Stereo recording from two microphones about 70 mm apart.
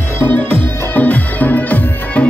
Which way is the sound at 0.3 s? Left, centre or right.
Left.